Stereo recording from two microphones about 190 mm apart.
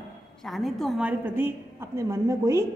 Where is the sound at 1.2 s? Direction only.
10° right (ahead or behind).